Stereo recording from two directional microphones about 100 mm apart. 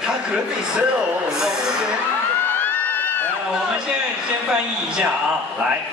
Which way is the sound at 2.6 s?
15° left (ahead or behind).